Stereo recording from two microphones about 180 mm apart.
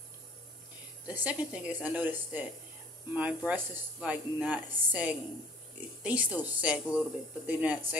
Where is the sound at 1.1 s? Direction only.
10° right (ahead or behind).